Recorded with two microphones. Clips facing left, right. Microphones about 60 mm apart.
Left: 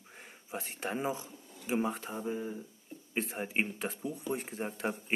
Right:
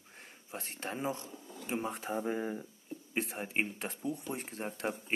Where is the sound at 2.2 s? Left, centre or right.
Right.